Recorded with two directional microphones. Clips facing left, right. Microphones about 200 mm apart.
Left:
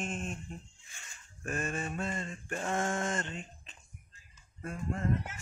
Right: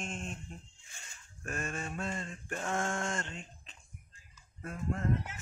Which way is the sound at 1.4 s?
Centre (ahead or behind).